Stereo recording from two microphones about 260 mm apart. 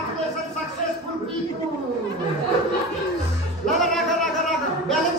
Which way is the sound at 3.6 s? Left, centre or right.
Centre.